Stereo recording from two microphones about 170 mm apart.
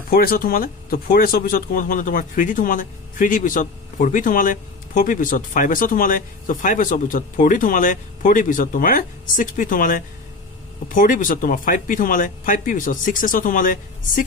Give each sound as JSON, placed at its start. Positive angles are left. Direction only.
{"t": 0.1, "sound": "speech", "side_deg": 60}